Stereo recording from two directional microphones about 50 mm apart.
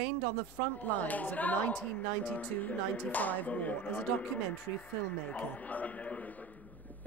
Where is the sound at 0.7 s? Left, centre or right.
Left.